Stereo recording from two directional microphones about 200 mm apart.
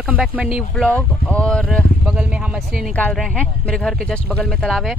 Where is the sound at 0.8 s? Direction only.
5° left (ahead or behind).